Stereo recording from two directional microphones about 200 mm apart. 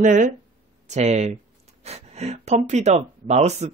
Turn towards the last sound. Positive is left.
turn(degrees=-35)  # may be behind; listen again after turning